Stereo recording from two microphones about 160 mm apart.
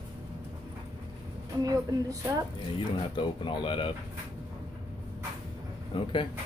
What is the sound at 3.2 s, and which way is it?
Speech, 30° left (ahead or behind).